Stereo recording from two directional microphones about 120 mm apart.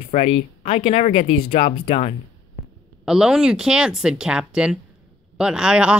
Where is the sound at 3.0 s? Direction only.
5° right (ahead or behind).